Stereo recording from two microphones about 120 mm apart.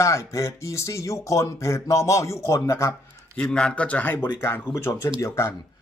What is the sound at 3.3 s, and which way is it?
Speech, 5° left (ahead or behind).